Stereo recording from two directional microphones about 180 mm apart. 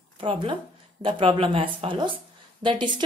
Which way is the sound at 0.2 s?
30° right (ahead or behind).